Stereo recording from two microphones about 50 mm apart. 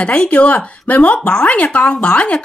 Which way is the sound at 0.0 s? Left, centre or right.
Left.